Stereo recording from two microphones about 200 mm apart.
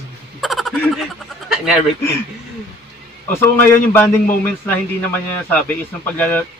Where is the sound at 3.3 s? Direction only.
10° left (ahead or behind).